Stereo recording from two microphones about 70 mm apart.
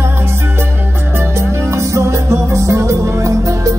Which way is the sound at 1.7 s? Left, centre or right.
Right.